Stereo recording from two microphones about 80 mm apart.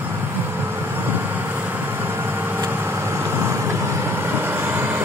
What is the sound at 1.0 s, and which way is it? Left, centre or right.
Vehicle, right.